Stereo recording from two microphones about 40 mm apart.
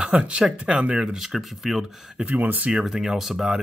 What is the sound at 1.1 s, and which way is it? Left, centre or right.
Speech, centre.